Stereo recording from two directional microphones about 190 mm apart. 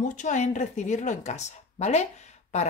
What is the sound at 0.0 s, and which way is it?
Speech, 40° left (ahead or behind).